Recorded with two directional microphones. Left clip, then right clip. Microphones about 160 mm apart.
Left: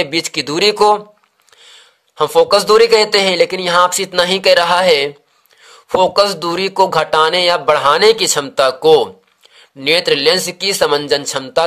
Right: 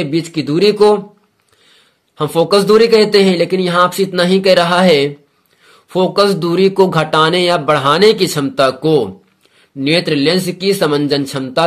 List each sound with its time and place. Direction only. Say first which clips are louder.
0.0 s speech: left 1 dB; 40° left (ahead or behind)
2.1 s speech: left 1 dB; 25° left (ahead or behind)